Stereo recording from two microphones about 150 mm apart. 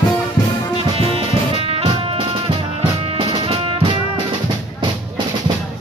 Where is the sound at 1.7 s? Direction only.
40° right (ahead or behind).